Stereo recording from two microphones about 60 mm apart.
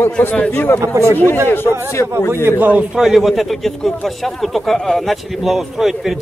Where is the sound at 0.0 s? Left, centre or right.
Left.